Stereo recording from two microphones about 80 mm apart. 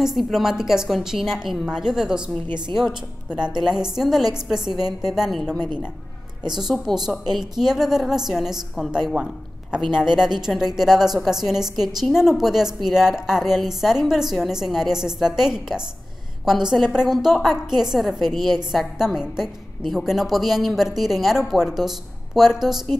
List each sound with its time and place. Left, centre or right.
0.0 s a woman's voice: centre
6.4 s a woman's voice: right
6.7 s a woman's voice: centre
9.1 s a man's voice: centre